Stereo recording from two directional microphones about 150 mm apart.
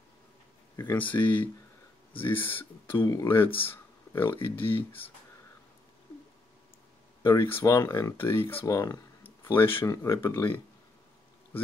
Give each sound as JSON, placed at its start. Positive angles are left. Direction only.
{"t": 0.7, "sound": "speech", "side_deg": 20}
{"t": 7.2, "sound": "speech", "side_deg": 15}